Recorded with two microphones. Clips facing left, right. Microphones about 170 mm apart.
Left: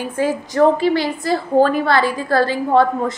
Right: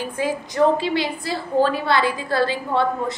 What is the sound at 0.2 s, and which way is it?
A woman's voice, 45° left (ahead or behind).